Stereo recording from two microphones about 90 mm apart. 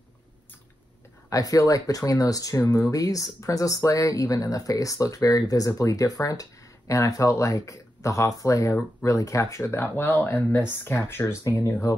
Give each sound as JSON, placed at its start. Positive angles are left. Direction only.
{"t": 1.3, "sound": "speech", "side_deg": 40}